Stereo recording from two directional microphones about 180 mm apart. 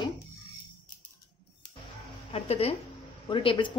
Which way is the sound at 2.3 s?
35° left (ahead or behind).